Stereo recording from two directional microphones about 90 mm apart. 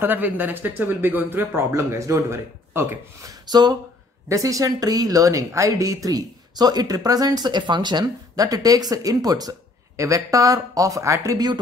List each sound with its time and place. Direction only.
0.0 s speech: 20° right (ahead or behind)
3.2 s speech: 45° right (ahead or behind)
4.3 s speech: 40° right (ahead or behind); by 8.0 s 60° right (ahead or behind)
8.4 s speech: 40° right (ahead or behind)